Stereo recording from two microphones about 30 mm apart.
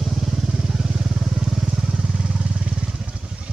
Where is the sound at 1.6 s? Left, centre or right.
Right.